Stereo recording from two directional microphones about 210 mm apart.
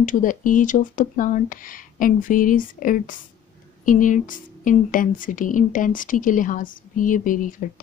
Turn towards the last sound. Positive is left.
turn(degrees=40)  # may be behind; listen again after turning